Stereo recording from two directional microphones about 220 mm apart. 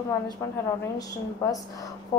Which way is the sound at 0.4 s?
15° left (ahead or behind).